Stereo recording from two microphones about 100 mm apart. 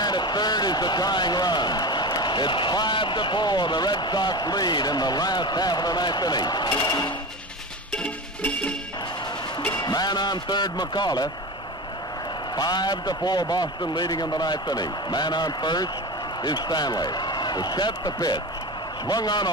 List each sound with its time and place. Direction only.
0.0 s a man's voice: 45° left (ahead or behind)
7.9 s music: 15° left (ahead or behind)
9.8 s a man's voice: 45° left (ahead or behind)
12.5 s a man's voice: 45° left (ahead or behind)